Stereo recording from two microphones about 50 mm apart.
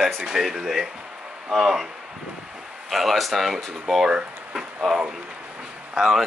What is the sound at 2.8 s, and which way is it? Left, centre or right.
Speech, centre.